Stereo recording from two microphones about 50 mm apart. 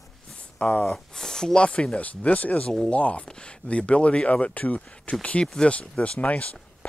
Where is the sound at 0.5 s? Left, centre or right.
Left.